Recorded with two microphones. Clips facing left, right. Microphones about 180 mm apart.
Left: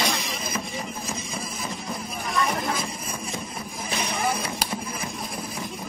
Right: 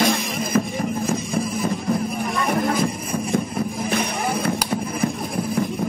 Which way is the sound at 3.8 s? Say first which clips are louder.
Left 1 dB; 55° right (ahead or behind).